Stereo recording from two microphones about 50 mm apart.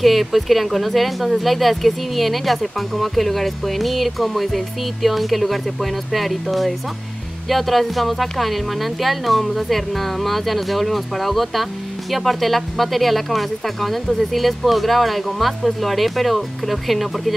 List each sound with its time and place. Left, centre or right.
0.0 s speech: centre